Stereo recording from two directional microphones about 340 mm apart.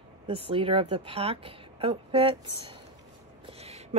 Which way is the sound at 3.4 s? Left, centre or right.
Centre.